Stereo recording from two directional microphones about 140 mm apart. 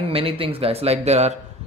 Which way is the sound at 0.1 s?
40° right (ahead or behind).